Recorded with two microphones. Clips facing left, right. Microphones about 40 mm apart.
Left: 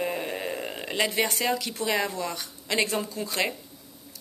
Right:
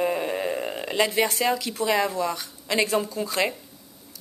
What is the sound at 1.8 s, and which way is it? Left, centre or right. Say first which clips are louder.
A woman's voice: right 5 dB; centre.